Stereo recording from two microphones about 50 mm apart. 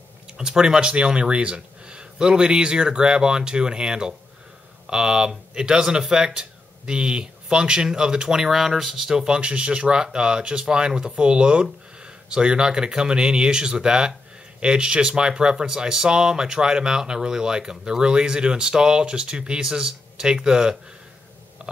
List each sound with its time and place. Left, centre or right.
0.4 s speech: centre
9.1 s speech: centre